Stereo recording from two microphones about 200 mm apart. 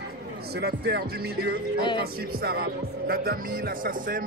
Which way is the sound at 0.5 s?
55° right (ahead or behind).